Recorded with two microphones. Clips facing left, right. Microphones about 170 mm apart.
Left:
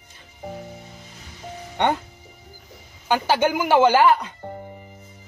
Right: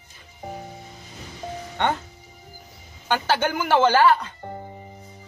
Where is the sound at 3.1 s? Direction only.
10° left (ahead or behind).